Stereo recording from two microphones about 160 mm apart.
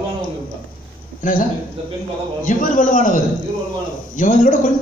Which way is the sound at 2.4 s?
55° left (ahead or behind).